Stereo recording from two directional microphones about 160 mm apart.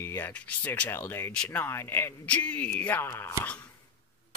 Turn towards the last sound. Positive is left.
turn(degrees=15)  # may be behind; listen again after turning